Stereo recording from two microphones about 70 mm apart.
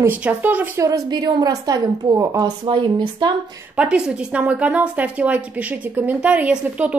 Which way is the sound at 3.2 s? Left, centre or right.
Right.